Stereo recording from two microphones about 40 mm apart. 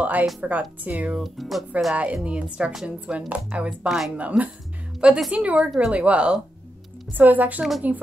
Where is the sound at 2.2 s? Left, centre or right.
Right.